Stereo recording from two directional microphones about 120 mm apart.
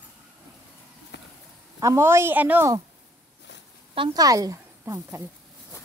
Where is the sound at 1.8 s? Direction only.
25° right (ahead or behind).